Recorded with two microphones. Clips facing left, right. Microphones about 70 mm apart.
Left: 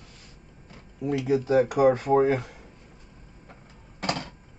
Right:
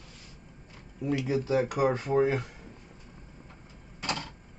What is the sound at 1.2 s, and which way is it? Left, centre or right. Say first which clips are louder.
Speech: left 6 dB; left.